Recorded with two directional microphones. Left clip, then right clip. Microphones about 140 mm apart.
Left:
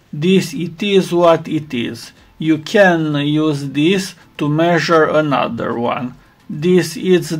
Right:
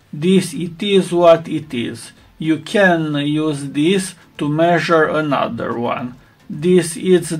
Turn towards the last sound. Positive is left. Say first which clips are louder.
# even
turn(degrees=35)  # may be behind; listen again after turning